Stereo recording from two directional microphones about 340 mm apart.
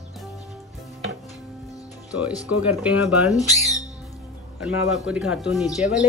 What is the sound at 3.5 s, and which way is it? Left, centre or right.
Speech, centre.